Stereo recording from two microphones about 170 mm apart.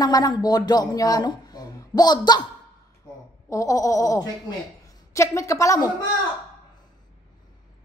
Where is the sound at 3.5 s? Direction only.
20° left (ahead or behind).